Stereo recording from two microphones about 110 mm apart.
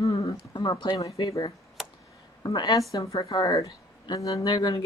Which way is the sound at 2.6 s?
40° left (ahead or behind).